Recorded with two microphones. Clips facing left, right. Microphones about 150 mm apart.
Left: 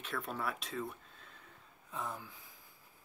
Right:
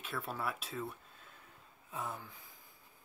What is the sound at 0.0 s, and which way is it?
Speech, 5° right (ahead or behind).